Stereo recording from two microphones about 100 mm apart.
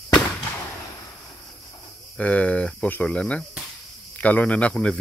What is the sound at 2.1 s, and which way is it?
Speech, 10° left (ahead or behind).